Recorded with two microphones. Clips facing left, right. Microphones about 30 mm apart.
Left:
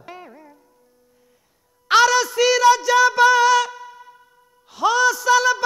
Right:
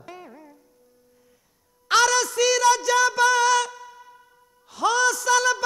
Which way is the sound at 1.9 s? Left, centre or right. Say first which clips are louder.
Left 4 dB; centre.